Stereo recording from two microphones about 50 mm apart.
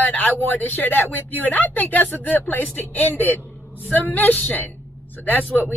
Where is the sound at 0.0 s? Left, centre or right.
Left.